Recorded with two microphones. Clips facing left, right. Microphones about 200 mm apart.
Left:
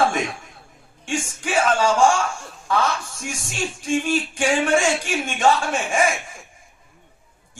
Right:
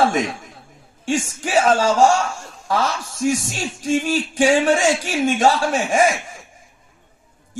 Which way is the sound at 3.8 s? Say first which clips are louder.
Right 3 dB; 40° right (ahead or behind).